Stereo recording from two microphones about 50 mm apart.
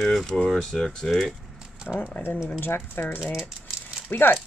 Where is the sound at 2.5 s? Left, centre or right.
Left.